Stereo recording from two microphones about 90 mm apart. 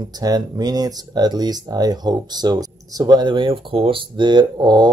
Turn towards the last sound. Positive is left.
turn(degrees=-50)  # may be behind; listen again after turning